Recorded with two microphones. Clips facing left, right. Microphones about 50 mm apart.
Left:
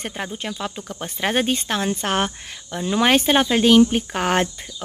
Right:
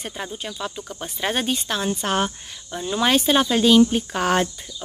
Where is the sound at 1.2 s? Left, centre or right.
Left.